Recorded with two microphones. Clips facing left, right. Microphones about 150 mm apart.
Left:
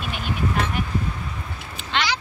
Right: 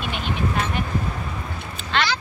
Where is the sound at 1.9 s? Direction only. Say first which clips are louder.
Right 1 dB; 15° left (ahead or behind).